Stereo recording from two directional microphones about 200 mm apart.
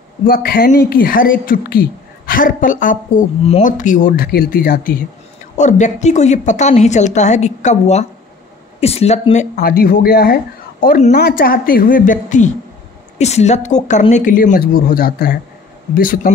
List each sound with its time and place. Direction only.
0.3 s a woman's voice: 45° left (ahead or behind)
5.6 s a woman's voice: 35° left (ahead or behind)